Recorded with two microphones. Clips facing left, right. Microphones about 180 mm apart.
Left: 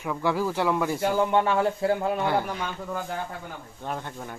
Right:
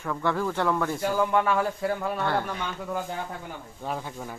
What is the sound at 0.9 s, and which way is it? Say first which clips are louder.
Speech: left 2 dB; 25° left (ahead or behind).